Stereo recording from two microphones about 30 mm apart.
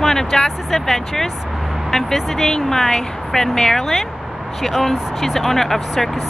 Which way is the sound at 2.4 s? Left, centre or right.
Centre.